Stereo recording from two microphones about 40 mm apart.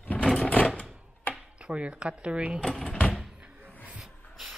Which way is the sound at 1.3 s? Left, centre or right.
Left.